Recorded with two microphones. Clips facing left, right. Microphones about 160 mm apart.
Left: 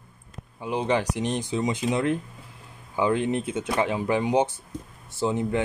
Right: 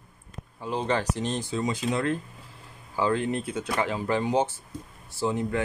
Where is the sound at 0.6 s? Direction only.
15° left (ahead or behind).